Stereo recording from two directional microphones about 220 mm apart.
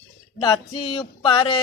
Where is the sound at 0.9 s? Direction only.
20° left (ahead or behind).